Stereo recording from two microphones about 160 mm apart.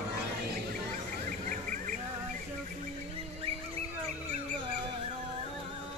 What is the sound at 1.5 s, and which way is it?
Bird, 55° right (ahead or behind).